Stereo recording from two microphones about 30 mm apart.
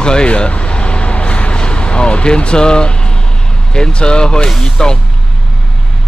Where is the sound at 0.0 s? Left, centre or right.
Left.